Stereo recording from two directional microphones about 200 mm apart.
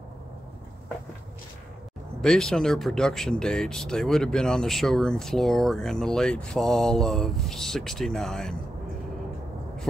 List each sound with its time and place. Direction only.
2.2 s speech: 5° left (ahead or behind)